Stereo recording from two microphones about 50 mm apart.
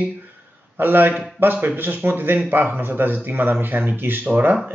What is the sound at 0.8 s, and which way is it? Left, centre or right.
A man's voice, right.